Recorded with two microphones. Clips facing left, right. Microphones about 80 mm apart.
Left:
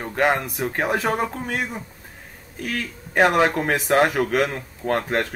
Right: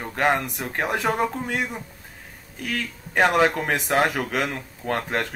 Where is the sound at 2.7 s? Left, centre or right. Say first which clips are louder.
Left 1 dB; centre.